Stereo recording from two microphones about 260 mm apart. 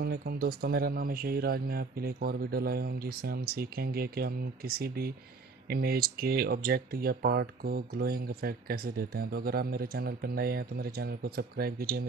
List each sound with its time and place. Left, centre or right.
0.0 s speech: right